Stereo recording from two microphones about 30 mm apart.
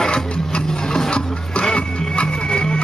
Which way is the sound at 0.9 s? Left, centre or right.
Left.